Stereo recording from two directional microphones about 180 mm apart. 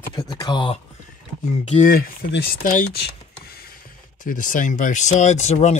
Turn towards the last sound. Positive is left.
turn(degrees=40)  # may be behind; listen again after turning